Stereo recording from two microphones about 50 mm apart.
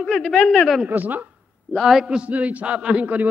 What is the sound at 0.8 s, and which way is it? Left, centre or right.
Speech, right.